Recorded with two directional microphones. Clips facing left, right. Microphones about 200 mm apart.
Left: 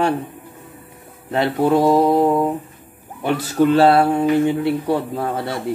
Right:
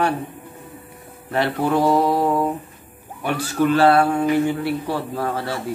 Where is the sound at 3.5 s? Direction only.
25° left (ahead or behind).